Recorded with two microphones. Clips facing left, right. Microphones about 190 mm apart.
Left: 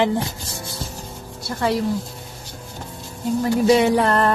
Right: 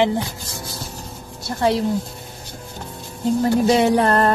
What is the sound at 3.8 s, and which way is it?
Music, 40° right (ahead or behind).